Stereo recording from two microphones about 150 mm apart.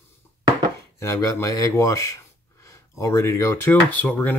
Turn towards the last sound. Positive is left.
turn(degrees=10)  # may be behind; listen again after turning